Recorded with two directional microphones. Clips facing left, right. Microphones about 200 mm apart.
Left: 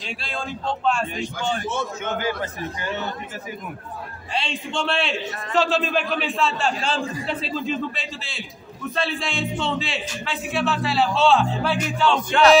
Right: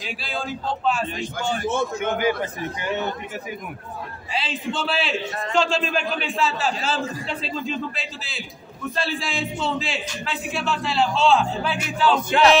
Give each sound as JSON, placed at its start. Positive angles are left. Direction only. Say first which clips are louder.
{"t": 0.0, "sound": "a man's voice", "louder": "right 1 dB", "side_deg": 0}
{"t": 2.0, "sound": "a man's voice", "louder": "right 3 dB", "side_deg": -15}
{"t": 4.3, "sound": "a man's voice", "louder": "even", "side_deg": -5}